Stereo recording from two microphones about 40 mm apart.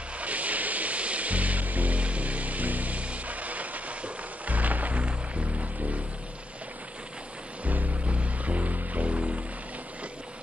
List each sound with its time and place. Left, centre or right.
0.2 s music: right
7.6 s music: right